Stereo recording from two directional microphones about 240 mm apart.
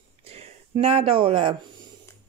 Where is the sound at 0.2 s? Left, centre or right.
Right.